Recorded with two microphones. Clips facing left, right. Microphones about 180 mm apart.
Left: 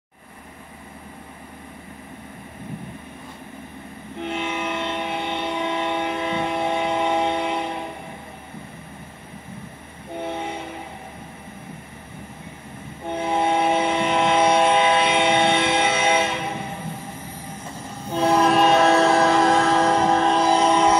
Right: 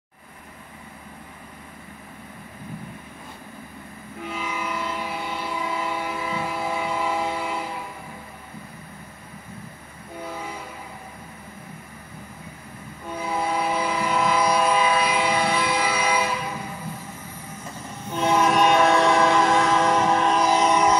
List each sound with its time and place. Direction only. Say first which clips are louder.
4.5 s music: left 3 dB; 65° left (ahead or behind)
4.8 s train: left 3 dB; 70° left (ahead or behind)
10.1 s train: left 5 dB; 25° left (ahead or behind)
13.0 s train: left 5 dB; 25° left (ahead or behind)
18.0 s train: left 2 dB; 35° left (ahead or behind)